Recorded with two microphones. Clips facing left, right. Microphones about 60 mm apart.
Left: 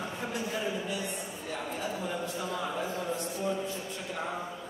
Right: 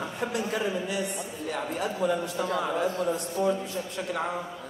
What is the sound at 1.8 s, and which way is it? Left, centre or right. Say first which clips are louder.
A man's voice: right 9 dB; right.